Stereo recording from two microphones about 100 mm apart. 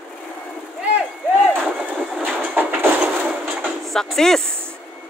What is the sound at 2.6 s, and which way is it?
Train, 20° right (ahead or behind).